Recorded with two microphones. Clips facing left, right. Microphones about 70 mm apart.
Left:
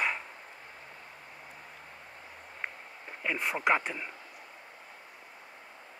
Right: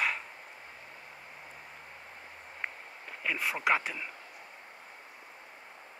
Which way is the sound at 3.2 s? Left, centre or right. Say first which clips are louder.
Left 1 dB; centre.